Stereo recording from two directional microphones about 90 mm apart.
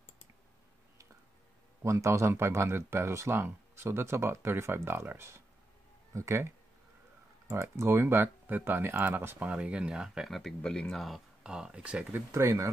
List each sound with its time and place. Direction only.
1.8 s speech: 35° right (ahead or behind)
9.5 s speech: 15° right (ahead or behind)
12.3 s speech: 35° right (ahead or behind)